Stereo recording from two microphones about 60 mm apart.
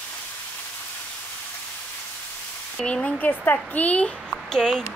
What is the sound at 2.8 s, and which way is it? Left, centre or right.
Speech, centre.